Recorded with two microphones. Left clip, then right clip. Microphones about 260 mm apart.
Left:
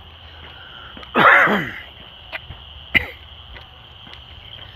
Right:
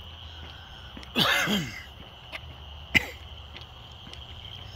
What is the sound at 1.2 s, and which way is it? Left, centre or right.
Throat clearing, left.